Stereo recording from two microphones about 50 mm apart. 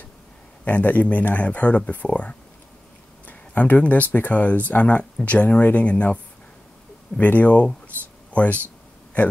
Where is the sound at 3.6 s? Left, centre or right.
Left.